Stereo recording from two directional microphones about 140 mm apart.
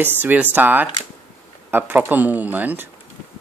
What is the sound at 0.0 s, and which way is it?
Speech, 15° right (ahead or behind).